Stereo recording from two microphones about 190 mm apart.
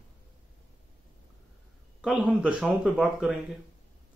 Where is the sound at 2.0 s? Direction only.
5° right (ahead or behind).